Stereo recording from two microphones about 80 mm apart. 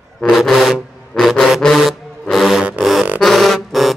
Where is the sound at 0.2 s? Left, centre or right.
Centre.